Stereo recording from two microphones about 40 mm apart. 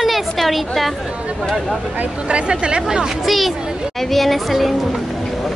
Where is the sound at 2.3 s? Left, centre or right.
Right.